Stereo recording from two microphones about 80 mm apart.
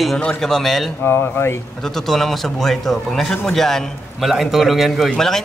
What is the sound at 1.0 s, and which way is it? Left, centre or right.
Speech, left.